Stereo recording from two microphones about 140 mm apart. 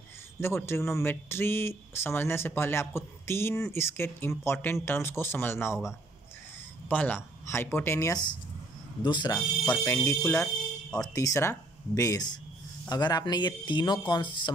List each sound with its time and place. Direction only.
0.4 s speech: 15° left (ahead or behind)
9.0 s speech: 35° left (ahead or behind)
9.3 s speech: 20° left (ahead or behind)